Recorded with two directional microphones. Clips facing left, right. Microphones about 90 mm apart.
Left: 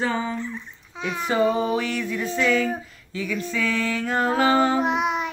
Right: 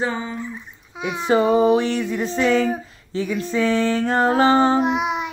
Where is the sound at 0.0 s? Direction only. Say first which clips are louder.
Even; 20° right (ahead or behind).